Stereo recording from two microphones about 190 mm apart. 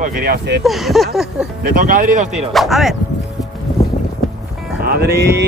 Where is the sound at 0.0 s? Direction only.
50° right (ahead or behind).